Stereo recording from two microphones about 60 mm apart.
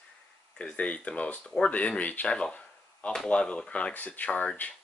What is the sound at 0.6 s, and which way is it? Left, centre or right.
Speech, centre.